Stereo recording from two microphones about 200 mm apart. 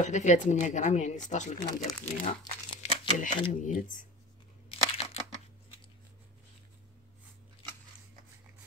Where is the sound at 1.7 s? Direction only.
20° left (ahead or behind).